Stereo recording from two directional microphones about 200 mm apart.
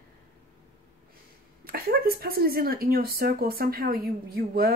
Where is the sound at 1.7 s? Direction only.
45° right (ahead or behind).